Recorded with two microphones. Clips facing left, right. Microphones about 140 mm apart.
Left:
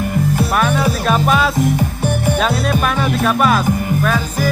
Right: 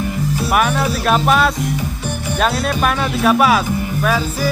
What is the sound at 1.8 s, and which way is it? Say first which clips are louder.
Music: left 5 dB; 55° left (ahead or behind).